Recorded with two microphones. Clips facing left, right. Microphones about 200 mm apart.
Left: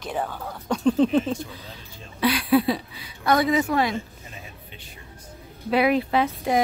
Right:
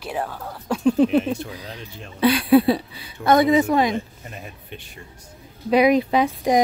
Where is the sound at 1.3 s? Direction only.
80° right.